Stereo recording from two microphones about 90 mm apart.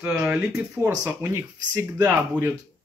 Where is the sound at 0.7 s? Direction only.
30° right (ahead or behind).